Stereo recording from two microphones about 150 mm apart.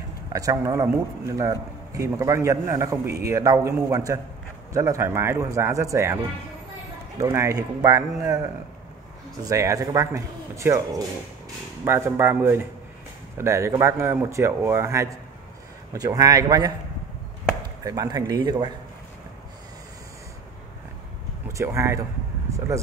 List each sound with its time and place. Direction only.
0.3 s a man's voice: 20° right (ahead or behind)
7.2 s a man's voice: 20° right (ahead or behind)
9.4 s a man's voice: 20° right (ahead or behind)
17.8 s a man's voice: 25° right (ahead or behind)
21.5 s speech: 20° right (ahead or behind)